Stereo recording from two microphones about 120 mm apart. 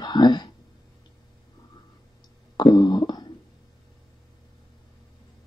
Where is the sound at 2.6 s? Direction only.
35° left (ahead or behind).